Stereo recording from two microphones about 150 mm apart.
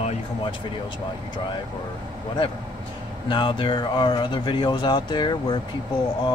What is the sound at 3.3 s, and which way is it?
Speech, 30° left (ahead or behind).